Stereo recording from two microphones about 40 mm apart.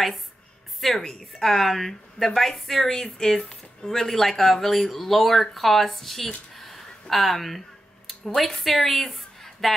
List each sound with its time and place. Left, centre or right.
0.7 s a woman's voice: centre